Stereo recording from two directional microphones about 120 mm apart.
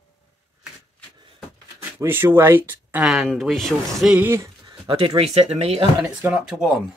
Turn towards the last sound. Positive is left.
turn(degrees=-5)  # may be behind; listen again after turning